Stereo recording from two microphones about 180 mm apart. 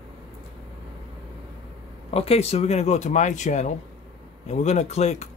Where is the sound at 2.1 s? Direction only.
35° left (ahead or behind).